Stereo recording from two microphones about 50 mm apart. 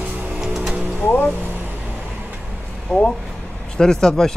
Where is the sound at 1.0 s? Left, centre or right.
Left.